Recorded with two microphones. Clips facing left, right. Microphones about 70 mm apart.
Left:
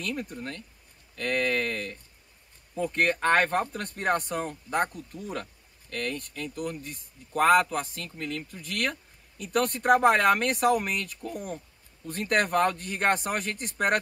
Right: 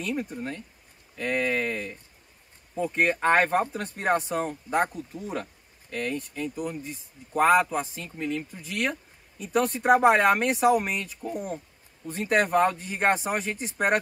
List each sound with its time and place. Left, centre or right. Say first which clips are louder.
0.0 s speech: right 3 dB; centre